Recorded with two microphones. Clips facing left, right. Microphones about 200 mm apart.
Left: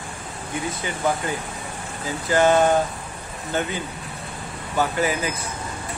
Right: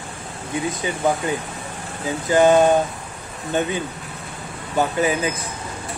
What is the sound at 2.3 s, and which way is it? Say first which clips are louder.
Speech: right 3 dB; 15° right (ahead or behind).